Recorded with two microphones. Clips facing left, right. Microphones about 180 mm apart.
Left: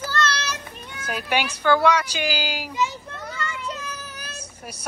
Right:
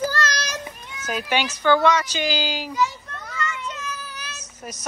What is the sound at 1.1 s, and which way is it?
Speech, 10° left (ahead or behind).